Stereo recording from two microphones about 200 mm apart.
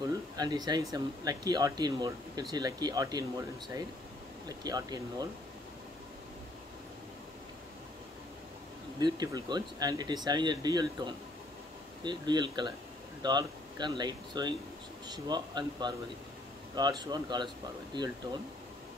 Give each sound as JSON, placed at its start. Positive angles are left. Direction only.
{"t": 0.4, "sound": "speech", "side_deg": -20}
{"t": 9.0, "sound": "speech", "side_deg": -20}